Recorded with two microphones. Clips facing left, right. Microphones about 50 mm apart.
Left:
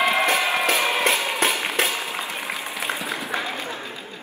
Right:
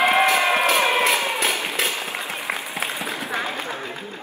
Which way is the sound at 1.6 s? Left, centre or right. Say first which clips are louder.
Left 1 dB; left.